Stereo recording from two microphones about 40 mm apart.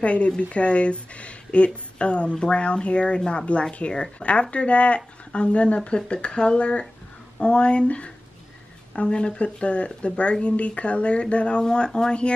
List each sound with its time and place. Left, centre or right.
0.0 s speech: left